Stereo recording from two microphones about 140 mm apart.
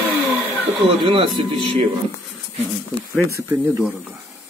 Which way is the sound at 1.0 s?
40° right (ahead or behind).